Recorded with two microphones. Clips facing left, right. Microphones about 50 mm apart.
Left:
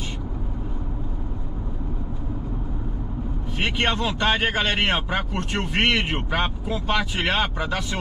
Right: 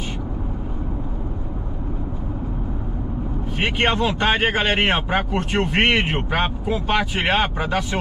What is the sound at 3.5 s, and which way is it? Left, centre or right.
Speech, right.